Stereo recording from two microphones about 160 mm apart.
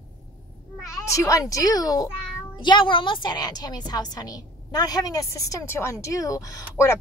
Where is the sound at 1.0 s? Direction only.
20° left (ahead or behind).